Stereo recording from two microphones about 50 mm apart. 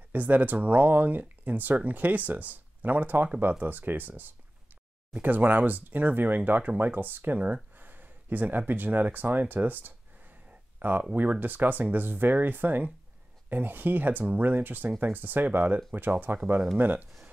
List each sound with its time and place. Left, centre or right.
0.1 s speech: right
5.2 s speech: right